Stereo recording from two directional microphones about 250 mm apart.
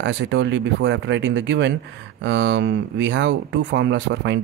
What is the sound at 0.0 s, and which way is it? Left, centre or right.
Speech, right.